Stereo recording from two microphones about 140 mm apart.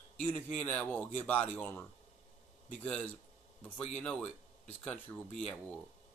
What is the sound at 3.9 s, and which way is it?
Speech, 10° left (ahead or behind).